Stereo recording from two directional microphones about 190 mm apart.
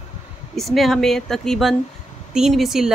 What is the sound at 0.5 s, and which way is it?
Speech, centre (ahead or behind).